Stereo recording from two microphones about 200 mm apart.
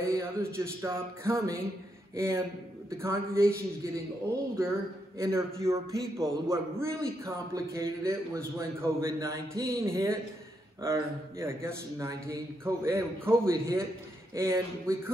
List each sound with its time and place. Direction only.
0.1 s a man's voice: 15° right (ahead or behind)